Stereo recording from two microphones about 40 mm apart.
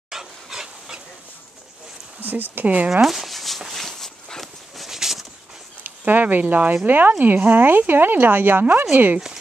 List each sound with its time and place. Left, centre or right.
0.1 s stir: centre
2.1 s speech: right
2.6 s speech: right
2.9 s a sound: centre
4.7 s bird: centre
5.9 s a sound: right
6.9 s speech: right